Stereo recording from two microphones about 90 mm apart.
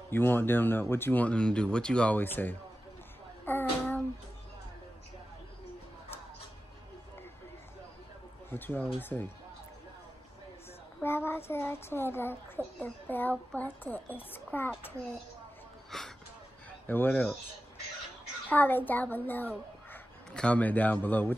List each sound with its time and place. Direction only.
0.1 s speech: 25° left (ahead or behind)
3.4 s a sound: 20° left (ahead or behind)
8.5 s speech: 20° left (ahead or behind)
11.0 s speech: 25° left (ahead or behind)
15.9 s speech: 5° left (ahead or behind)
16.8 s speech: 25° left (ahead or behind)
17.1 s speech: 10° left (ahead or behind)
18.5 s speech: 20° left (ahead or behind)